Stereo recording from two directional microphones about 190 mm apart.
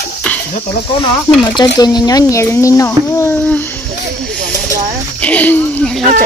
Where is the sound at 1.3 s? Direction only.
20° left (ahead or behind).